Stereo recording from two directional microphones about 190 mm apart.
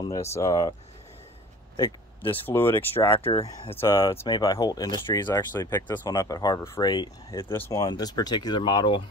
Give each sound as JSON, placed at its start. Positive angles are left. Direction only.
{"t": 0.3, "sound": "speech", "side_deg": 15}
{"t": 1.8, "sound": "speech", "side_deg": 10}
{"t": 3.0, "sound": "speech", "side_deg": 25}
{"t": 3.7, "sound": "speech", "side_deg": 15}
{"t": 4.0, "sound": "speech", "side_deg": 30}